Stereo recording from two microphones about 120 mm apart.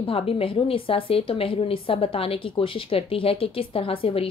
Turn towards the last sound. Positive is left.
turn(degrees=50)  # may be behind; listen again after turning